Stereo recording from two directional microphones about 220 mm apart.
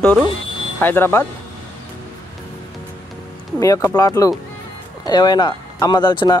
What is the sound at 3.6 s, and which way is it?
Speech, 15° left (ahead or behind).